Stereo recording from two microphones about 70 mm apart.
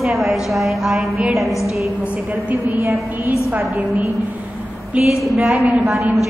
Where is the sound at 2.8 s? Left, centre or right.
Right.